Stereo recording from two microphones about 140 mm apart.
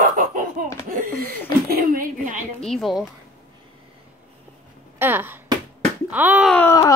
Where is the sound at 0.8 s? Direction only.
85° right.